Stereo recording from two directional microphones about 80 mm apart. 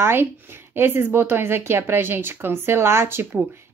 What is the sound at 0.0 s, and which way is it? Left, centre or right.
A woman's voice, right.